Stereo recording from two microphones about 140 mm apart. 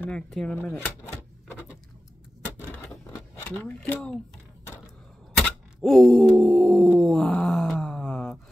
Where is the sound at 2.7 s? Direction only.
15° left (ahead or behind).